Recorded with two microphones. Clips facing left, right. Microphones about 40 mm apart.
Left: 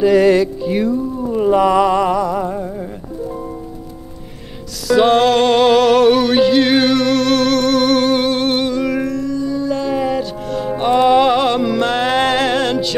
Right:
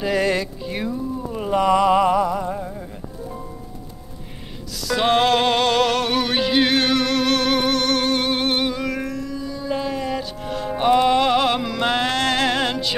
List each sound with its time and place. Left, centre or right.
0.0 s music: centre
1.9 s music: centre
2.3 s a sound: centre
4.8 s music: centre
7.7 s a sound: centre
8.3 s music: centre
9.9 s music: centre